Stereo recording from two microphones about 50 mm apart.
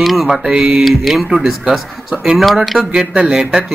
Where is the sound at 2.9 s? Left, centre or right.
Centre.